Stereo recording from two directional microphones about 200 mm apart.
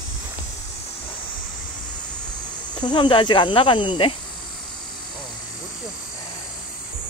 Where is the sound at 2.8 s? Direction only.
25° left (ahead or behind).